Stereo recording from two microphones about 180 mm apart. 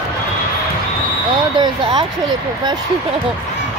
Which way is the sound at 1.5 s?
25° right (ahead or behind).